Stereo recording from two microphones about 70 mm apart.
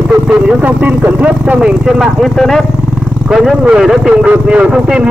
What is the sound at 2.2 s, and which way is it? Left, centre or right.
Speech, centre.